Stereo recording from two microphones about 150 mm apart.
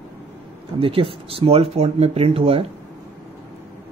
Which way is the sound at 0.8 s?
35° right (ahead or behind).